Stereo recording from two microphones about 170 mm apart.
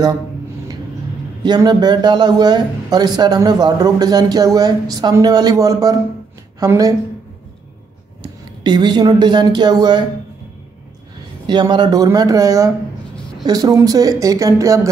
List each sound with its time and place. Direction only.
1.4 s speech: 25° right (ahead or behind)
8.2 s speech: 25° right (ahead or behind)
11.4 s speech: 25° right (ahead or behind)